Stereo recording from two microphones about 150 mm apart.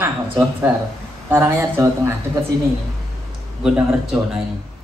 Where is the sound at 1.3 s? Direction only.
15° right (ahead or behind).